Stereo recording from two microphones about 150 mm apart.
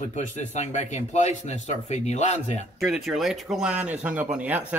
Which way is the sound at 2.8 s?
Centre (ahead or behind).